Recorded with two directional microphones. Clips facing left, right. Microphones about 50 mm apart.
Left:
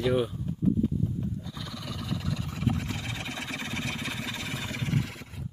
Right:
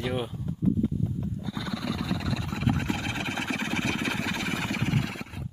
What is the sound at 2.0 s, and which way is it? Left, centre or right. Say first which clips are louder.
Vehicle: right 3 dB; right.